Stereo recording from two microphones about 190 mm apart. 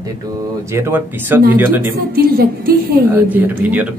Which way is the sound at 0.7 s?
10° right (ahead or behind).